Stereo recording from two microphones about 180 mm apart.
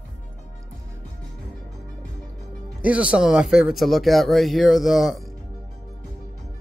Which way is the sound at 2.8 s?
5° right (ahead or behind).